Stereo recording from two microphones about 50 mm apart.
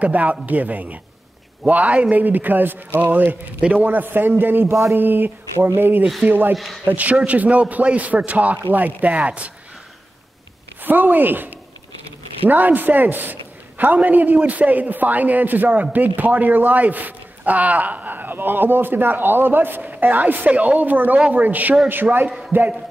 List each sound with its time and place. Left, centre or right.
0.0 s a man's voice: right
4.6 s speech: right
4.9 s a man's voice: right
6.5 s a man's voice: centre
6.9 s a man's voice: right
10.9 s a man's voice: right
12.4 s a man's voice: right